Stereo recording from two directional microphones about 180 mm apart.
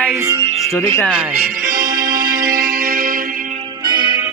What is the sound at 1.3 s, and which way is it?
Music, 50° right (ahead or behind).